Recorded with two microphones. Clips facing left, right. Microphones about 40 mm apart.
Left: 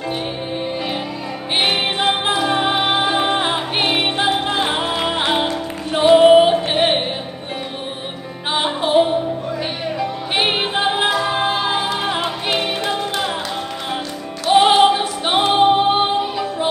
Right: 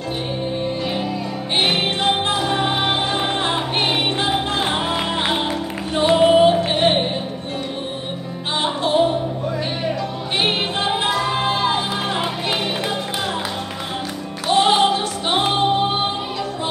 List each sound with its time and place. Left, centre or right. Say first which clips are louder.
1.6 s music: left 1 dB; centre
8.5 s music: left 2 dB; centre
14.5 s music: left 4 dB; centre